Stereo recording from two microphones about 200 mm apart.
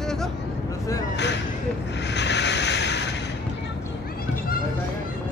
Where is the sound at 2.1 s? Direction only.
60° left (ahead or behind).